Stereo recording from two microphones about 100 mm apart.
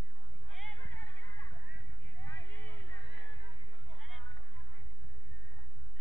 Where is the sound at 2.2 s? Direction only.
45° left (ahead or behind).